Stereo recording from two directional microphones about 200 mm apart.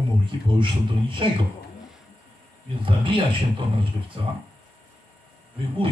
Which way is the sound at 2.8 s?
25° right (ahead or behind).